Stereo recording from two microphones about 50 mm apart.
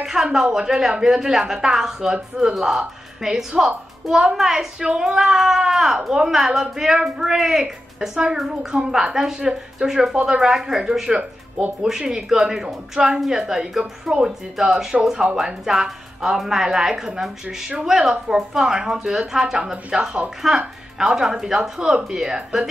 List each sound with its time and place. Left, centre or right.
0.0 s a woman's voice: centre